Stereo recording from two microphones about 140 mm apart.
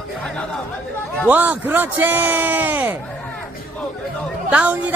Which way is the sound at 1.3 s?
15° right (ahead or behind).